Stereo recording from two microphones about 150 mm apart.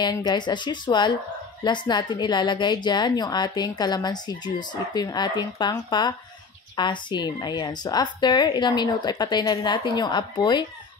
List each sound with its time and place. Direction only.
0.0 s a woman's voice: 30° left (ahead or behind)